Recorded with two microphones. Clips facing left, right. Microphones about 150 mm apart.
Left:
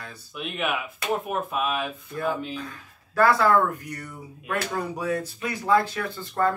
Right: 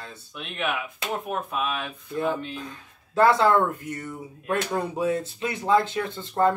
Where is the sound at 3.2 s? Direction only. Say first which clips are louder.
Right 1 dB; 20° right (ahead or behind).